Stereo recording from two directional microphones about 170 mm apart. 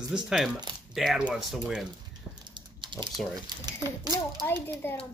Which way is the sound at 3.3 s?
25° right (ahead or behind).